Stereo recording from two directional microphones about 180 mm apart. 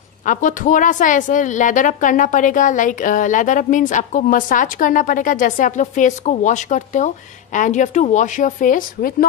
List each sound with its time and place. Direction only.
0.2 s a woman's voice: 45° left (ahead or behind)